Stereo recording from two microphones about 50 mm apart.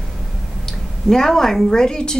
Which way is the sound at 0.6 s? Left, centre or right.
Centre.